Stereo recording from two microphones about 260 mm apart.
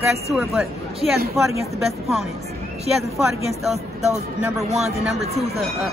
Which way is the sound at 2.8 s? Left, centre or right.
Centre.